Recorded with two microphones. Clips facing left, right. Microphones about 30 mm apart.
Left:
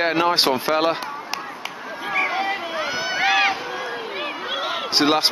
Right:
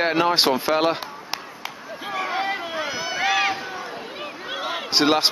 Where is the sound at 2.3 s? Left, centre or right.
Centre.